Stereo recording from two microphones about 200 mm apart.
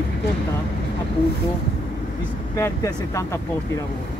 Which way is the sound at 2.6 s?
15° left (ahead or behind).